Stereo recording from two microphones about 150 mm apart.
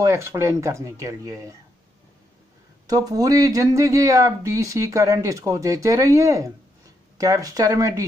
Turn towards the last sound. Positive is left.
turn(degrees=-20)  # may be behind; listen again after turning